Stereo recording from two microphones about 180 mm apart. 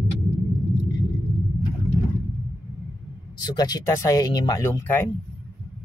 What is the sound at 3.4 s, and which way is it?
Speech, 20° left (ahead or behind).